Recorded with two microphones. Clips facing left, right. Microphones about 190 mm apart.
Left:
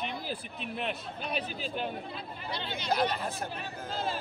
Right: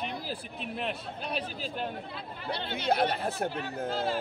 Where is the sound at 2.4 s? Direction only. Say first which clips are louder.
Right 4 dB; 60° right (ahead or behind).